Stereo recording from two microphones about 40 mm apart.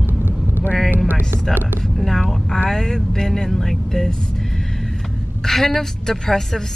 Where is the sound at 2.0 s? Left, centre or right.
Centre.